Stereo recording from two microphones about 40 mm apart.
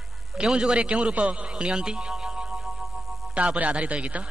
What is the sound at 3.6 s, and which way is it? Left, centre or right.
Speech, right.